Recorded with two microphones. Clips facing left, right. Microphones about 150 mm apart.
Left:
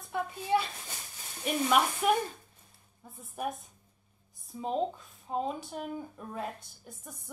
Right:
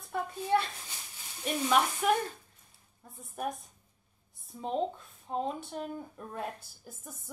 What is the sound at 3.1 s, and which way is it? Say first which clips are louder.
A woman's voice: even; centre (ahead or behind).